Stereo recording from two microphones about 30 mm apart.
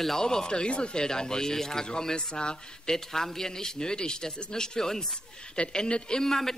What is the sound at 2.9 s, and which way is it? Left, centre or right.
A man's voice, centre.